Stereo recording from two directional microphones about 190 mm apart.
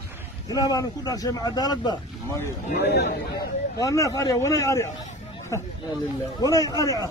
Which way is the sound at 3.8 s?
15° left (ahead or behind).